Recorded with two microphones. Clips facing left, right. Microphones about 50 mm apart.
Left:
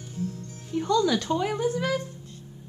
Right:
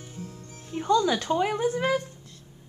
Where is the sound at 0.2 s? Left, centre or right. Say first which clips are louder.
Left 9 dB; right.